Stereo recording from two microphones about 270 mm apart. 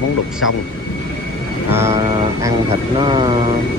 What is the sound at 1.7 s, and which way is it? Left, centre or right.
Speech, centre.